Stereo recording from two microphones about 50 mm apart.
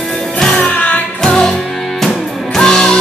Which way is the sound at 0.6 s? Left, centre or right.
Left.